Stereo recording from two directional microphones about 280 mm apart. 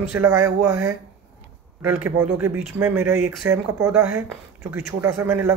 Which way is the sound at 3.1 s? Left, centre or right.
Right.